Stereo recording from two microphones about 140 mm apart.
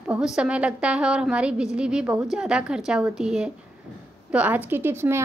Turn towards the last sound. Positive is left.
turn(degrees=-15)  # may be behind; listen again after turning